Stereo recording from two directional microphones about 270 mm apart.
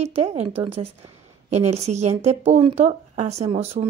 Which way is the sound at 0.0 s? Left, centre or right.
Right.